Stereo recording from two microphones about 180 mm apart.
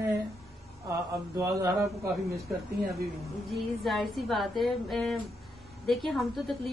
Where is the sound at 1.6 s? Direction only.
15° right (ahead or behind).